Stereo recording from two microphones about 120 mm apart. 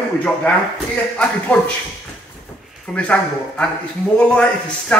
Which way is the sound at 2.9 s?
10° left (ahead or behind).